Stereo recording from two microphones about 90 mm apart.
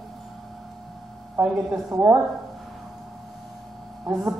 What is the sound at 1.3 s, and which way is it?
Speech, 35° right (ahead or behind).